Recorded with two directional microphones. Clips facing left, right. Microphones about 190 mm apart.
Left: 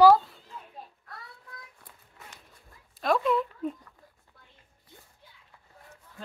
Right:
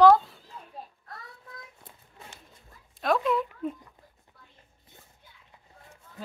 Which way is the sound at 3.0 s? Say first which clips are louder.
Even; centre (ahead or behind).